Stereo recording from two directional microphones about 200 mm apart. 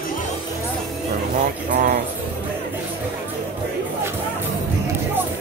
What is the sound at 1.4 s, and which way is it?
Speech, 40° right (ahead or behind).